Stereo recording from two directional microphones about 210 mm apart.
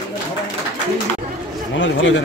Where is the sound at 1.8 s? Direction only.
60° left (ahead or behind).